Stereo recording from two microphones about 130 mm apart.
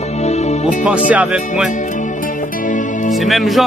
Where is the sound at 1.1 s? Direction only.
10° right (ahead or behind).